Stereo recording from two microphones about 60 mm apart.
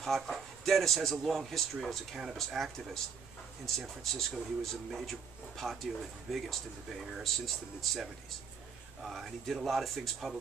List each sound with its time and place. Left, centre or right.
0.0 s speech: centre